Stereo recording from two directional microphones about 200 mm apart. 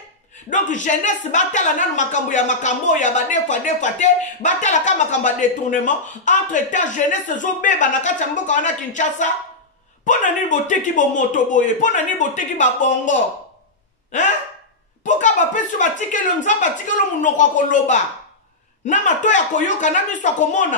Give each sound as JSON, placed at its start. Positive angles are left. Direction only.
{"t": 0.5, "sound": "speech", "side_deg": 40}
{"t": 15.0, "sound": "speech", "side_deg": 40}